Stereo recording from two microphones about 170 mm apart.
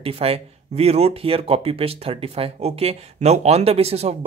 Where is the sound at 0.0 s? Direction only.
35° right (ahead or behind).